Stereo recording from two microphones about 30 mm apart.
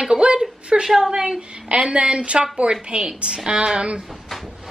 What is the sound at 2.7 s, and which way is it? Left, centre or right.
A woman's voice, right.